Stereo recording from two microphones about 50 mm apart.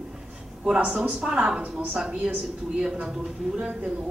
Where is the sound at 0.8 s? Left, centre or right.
Centre.